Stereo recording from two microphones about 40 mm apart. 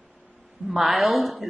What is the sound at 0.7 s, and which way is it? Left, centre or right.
Speech, centre.